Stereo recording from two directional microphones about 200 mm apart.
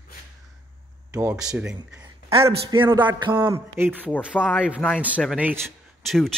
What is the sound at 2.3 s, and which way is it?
Speech, 25° right (ahead or behind).